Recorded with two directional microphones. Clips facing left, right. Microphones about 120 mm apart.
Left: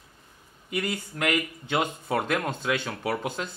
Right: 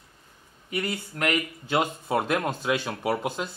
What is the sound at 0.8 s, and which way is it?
Speech, centre (ahead or behind).